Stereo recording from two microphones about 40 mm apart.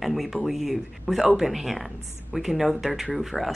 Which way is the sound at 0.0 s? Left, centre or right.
Centre.